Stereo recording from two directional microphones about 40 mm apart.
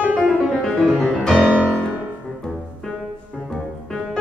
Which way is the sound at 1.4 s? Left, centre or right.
Right.